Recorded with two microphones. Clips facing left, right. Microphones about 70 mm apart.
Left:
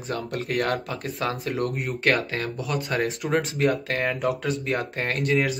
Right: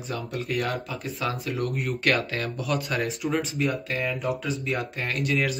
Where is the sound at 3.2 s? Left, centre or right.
Left.